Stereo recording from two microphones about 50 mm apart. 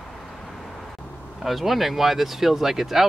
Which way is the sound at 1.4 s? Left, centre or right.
Centre.